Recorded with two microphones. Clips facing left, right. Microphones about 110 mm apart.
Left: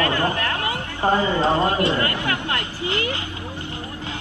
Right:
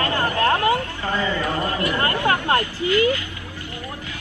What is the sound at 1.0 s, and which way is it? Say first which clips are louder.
Speech: left 5 dB; 20° left (ahead or behind).